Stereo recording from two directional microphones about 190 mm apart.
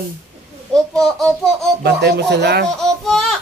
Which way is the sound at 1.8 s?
60° right (ahead or behind).